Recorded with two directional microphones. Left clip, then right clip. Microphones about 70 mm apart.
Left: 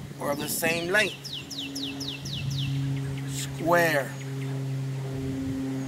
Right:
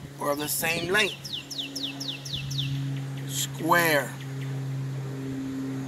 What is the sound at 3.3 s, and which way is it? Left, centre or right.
Speech, left.